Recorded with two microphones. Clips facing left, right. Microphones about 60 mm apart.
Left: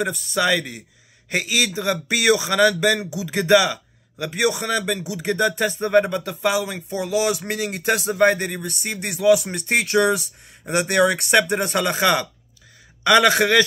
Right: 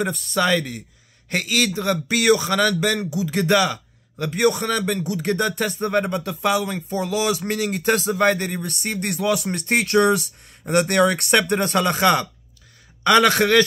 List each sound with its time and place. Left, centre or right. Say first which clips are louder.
0.0 s a man's voice: even; centre
5.6 s speech: left 3 dB; left
8.5 s speech: right 1 dB; centre